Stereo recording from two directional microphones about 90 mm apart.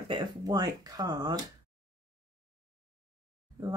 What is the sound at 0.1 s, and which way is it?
Speech, 50° right (ahead or behind).